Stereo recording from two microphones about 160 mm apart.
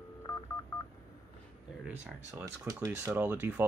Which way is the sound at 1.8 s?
10° right (ahead or behind).